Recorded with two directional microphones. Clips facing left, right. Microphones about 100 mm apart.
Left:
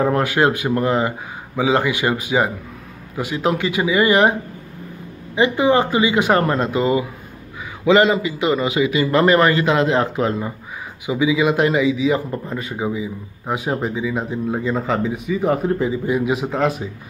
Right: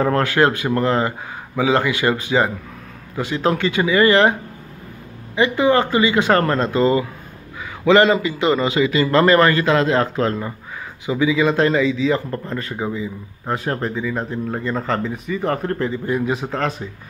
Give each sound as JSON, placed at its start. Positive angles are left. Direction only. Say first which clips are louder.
{"t": 0.0, "sound": "a man's voice", "louder": "even", "side_deg": 15}